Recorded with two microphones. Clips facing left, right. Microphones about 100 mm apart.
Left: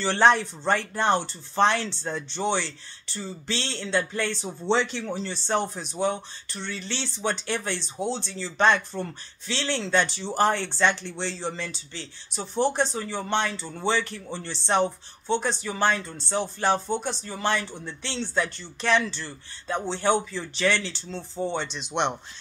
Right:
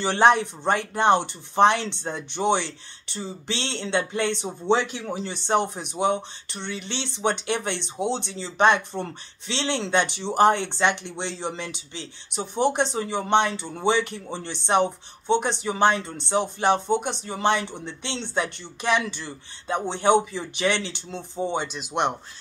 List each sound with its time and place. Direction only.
0.0 s speech: 15° right (ahead or behind)